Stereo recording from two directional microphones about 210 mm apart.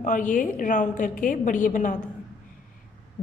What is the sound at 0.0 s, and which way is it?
A woman's voice, 40° left (ahead or behind).